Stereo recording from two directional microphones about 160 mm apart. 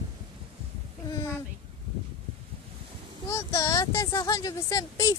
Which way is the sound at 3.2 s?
20° left (ahead or behind).